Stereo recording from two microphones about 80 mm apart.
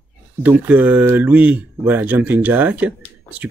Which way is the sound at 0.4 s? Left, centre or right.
Right.